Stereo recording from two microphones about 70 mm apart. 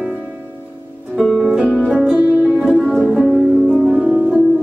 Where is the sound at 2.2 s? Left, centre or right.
Centre.